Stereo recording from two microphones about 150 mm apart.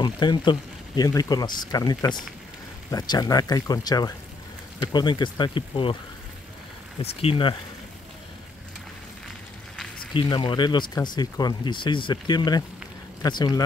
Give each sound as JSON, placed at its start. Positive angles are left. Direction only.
{"t": 0.0, "sound": "speech", "side_deg": 30}
{"t": 7.0, "sound": "speech", "side_deg": 40}
{"t": 10.1, "sound": "speech", "side_deg": 30}